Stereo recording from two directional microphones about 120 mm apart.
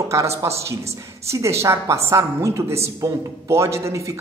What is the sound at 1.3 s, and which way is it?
A woman's voice, 25° right (ahead or behind).